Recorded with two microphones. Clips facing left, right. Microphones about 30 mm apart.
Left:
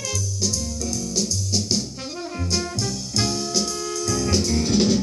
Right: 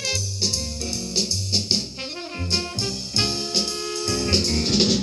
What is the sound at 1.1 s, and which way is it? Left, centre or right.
Music, right.